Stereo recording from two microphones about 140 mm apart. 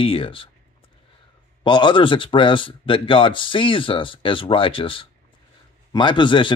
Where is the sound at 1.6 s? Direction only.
35° left (ahead or behind).